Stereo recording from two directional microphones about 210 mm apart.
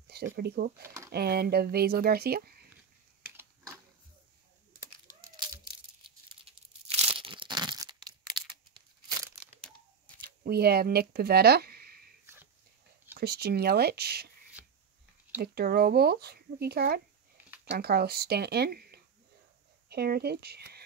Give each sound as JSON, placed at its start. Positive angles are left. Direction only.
{"t": 0.1, "sound": "speech", "side_deg": -50}
{"t": 0.8, "sound": "speech", "side_deg": -15}
{"t": 1.1, "sound": "speech", "side_deg": -50}
{"t": 3.2, "sound": "typing", "side_deg": -10}
{"t": 6.0, "sound": "tearing", "side_deg": -25}
{"t": 10.2, "sound": "speech", "side_deg": -50}
{"t": 13.2, "sound": "speech", "side_deg": -50}
{"t": 15.4, "sound": "speech", "side_deg": -45}